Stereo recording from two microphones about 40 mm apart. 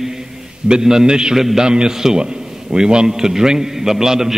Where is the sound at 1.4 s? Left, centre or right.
Centre.